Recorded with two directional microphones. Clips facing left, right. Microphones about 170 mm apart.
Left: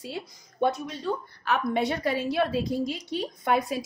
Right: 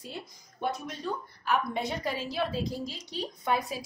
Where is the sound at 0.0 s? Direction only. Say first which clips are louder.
Left 5 dB; 80° left.